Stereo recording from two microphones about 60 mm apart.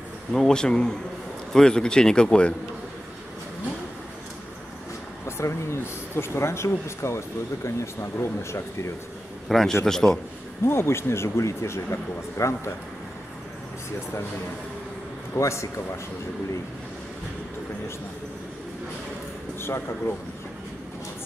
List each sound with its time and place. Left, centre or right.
0.3 s speech: centre
5.2 s speech: left
9.5 s a man's voice: centre
10.6 s speech: left
15.3 s speech: left
19.6 s speech: left